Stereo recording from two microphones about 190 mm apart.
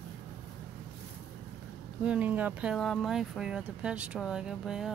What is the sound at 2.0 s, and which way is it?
Speech, 10° right (ahead or behind).